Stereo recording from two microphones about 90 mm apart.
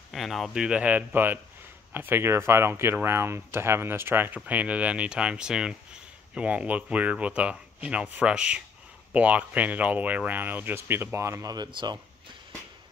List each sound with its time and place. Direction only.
0.1 s speech: centre (ahead or behind)
0.7 s speech: 15° right (ahead or behind); by 11.5 s 35° right (ahead or behind)
11.5 s speech: 55° right (ahead or behind)